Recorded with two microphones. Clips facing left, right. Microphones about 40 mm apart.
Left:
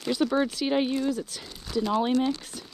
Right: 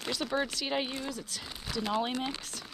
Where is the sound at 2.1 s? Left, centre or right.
Right.